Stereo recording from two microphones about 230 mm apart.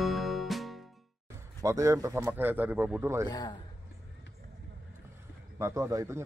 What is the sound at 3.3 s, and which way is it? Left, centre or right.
Speech, centre.